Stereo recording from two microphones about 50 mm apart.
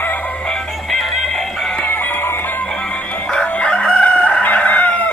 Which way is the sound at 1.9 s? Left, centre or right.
Left.